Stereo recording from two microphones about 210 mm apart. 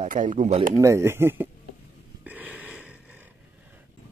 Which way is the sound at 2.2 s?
10° right (ahead or behind).